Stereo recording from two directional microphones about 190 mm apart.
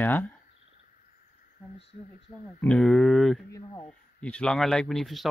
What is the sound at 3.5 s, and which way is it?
Speech, 15° left (ahead or behind).